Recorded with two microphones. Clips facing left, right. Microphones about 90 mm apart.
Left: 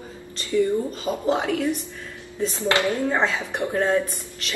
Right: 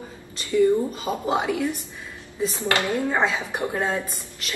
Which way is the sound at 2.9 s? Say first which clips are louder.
Even; 15° right (ahead or behind).